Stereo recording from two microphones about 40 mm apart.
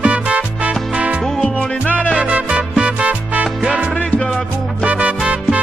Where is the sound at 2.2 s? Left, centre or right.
Right.